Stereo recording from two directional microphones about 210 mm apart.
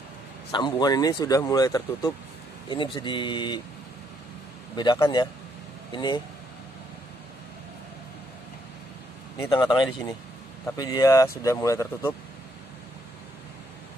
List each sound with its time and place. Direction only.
0.5 s speech: 20° left (ahead or behind)
4.7 s speech: 20° left (ahead or behind)
9.4 s speech: 20° left (ahead or behind)